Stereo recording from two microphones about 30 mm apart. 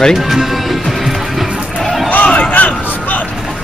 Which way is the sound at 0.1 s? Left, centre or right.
Centre.